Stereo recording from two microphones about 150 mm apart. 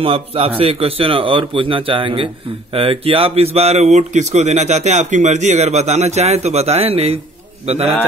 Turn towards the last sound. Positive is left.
turn(degrees=-45)  # may be behind; listen again after turning